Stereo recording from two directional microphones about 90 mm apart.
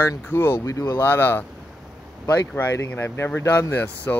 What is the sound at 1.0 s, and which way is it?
Speech, 25° left (ahead or behind).